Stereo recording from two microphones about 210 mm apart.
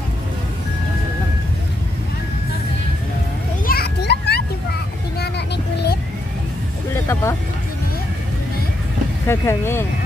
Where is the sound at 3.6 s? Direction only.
45° left (ahead or behind).